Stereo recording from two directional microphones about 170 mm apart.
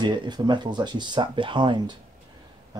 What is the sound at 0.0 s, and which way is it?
Speech, 25° right (ahead or behind).